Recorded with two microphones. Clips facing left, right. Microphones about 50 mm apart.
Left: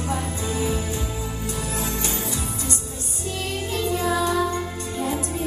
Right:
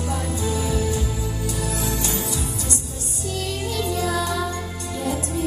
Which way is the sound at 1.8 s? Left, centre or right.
Left.